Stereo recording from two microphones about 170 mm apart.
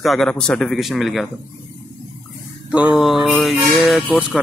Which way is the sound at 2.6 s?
5° right (ahead or behind).